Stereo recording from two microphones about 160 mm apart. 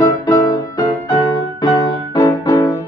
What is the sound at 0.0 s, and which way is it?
Music, 25° left (ahead or behind).